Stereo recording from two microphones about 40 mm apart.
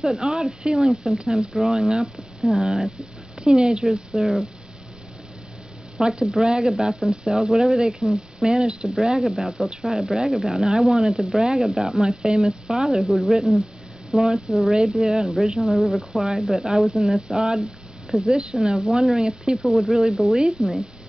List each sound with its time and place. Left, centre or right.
0.2 s speech: centre
3.3 s speech: right
4.1 s speech: centre
6.0 s speech: centre
6.9 s speech: centre
8.0 s speech: centre
8.5 s speech: right
15.7 s speech: centre
16.6 s speech: centre